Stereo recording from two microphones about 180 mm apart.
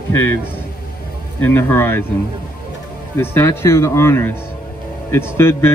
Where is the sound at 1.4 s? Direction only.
10° left (ahead or behind).